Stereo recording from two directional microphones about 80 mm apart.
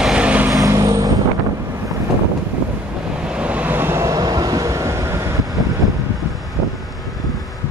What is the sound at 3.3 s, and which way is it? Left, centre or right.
Vehicle, centre.